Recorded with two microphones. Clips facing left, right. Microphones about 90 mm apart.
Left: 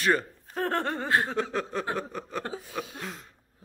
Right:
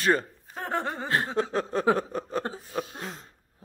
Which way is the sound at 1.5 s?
35° right (ahead or behind).